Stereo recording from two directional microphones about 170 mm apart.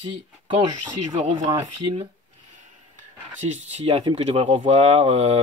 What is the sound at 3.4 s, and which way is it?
Speech, 40° right (ahead or behind).